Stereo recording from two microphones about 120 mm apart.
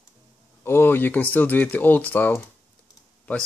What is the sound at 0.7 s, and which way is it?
Speech, 20° left (ahead or behind).